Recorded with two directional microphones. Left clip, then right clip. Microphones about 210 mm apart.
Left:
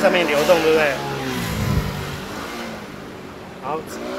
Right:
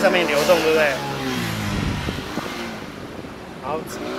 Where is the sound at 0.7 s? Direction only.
45° left (ahead or behind).